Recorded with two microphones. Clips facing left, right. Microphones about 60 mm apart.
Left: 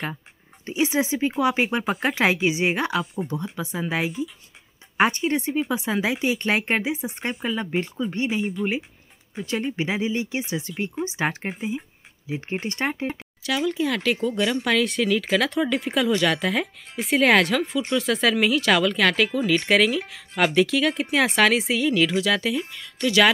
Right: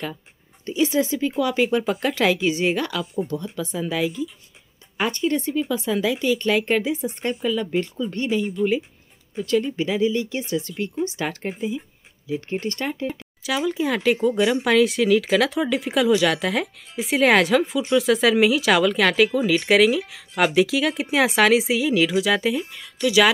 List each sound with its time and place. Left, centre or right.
0.7 s speech: left
6.8 s speech: centre
7.4 s speech: left
12.8 s speech: left
13.5 s speech: centre